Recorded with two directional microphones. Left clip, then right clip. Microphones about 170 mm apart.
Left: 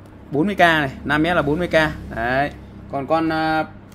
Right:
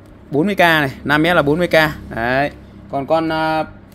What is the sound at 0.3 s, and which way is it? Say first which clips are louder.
Speech: right 2 dB; 45° right (ahead or behind).